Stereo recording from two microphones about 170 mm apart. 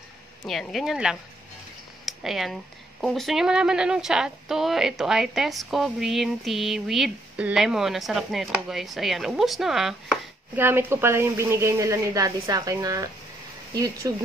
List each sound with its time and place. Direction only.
0.4 s a woman's voice: centre (ahead or behind); by 14.1 s 20° right (ahead or behind)